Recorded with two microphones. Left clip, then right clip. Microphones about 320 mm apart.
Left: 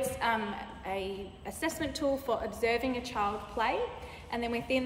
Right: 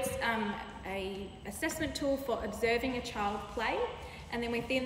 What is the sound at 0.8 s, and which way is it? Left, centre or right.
A woman's voice, centre.